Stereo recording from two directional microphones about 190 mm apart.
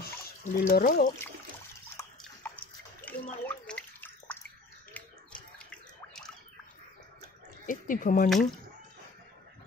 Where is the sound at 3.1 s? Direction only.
5° left (ahead or behind).